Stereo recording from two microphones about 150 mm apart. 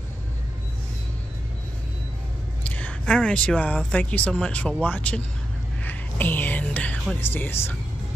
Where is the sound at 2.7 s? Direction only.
10° left (ahead or behind).